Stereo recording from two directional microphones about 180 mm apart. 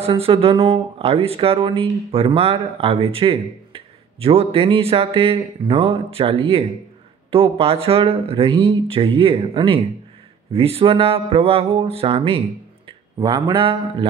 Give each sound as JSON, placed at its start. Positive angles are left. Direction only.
{"t": 0.0, "sound": "speech", "side_deg": -30}